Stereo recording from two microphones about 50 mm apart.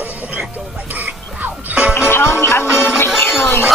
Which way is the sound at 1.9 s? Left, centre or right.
Left.